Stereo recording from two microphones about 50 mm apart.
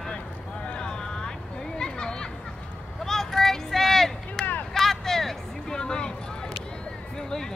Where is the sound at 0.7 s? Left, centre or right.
Centre.